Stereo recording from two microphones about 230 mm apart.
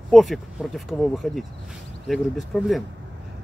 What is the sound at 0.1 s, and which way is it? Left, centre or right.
Speech, centre.